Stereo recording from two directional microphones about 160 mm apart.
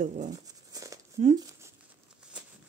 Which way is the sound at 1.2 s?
50° right (ahead or behind).